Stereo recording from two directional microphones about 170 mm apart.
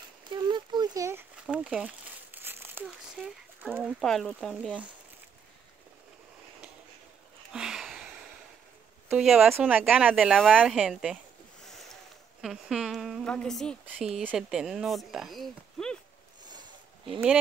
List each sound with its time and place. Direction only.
0.3 s a sound: 25° right (ahead or behind)
1.3 s crumpling: 5° right (ahead or behind)
3.7 s speech: centre (ahead or behind)
7.5 s sniff: 5° right (ahead or behind)
9.1 s speech: centre (ahead or behind)
11.6 s a sound: centre (ahead or behind)
13.8 s speech: 5° right (ahead or behind)